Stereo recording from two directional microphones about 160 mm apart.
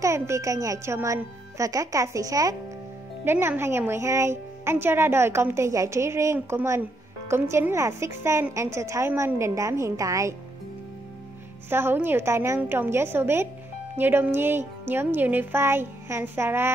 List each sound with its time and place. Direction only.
0.0 s a woman's voice: 20° right (ahead or behind)
11.7 s a woman's voice: 15° right (ahead or behind)